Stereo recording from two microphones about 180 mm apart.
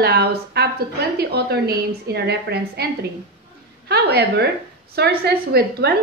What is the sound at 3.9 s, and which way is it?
A woman's voice, 60° right (ahead or behind).